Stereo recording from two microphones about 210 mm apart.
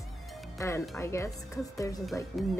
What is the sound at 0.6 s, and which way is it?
Speech, 15° left (ahead or behind).